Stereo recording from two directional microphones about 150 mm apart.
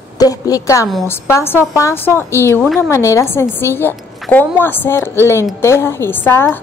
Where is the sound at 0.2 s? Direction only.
25° left (ahead or behind).